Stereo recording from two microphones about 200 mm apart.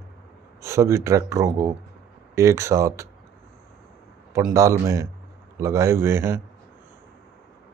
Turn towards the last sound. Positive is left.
turn(degrees=-10)  # may be behind; listen again after turning